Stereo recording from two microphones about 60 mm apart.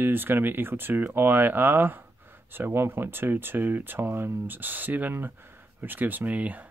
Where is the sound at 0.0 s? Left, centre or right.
Right.